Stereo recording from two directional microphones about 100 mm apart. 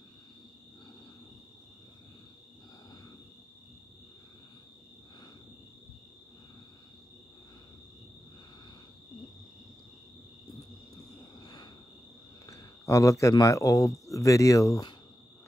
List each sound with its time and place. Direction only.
11.4 s cricket: 45° left (ahead or behind)
12.4 s a man's voice: 35° left (ahead or behind)